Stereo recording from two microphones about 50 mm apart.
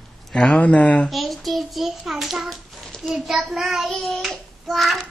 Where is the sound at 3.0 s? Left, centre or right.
Centre.